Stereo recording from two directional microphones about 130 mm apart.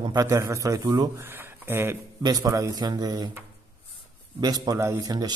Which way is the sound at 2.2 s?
25° right (ahead or behind).